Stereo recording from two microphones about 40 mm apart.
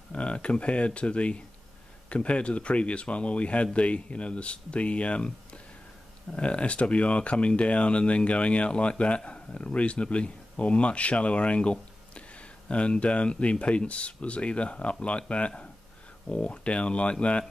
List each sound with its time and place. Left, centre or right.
0.1 s speech: left